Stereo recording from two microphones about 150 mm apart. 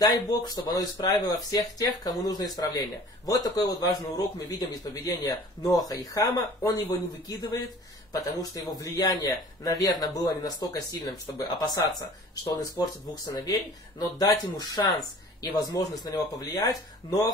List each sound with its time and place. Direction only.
0.0 s speech: 25° left (ahead or behind)
13.2 s speech: 25° left (ahead or behind)